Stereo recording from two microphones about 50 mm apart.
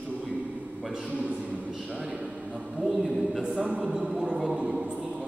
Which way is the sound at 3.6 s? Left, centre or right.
Right.